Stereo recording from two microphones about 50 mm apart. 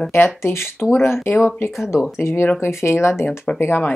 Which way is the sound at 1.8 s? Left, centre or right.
Centre.